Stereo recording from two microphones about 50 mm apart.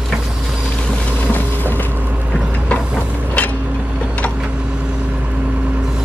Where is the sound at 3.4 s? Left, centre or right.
Left.